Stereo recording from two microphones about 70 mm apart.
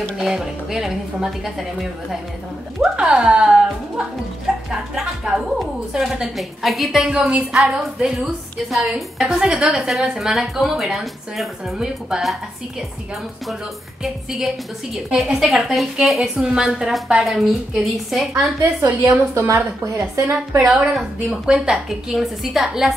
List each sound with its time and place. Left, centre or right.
0.2 s a woman's voice: centre
7.5 s a woman's voice: centre
19.0 s a woman's voice: right
20.5 s a woman's voice: centre